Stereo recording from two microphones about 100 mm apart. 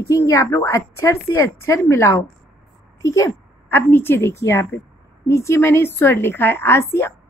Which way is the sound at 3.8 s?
20° left (ahead or behind).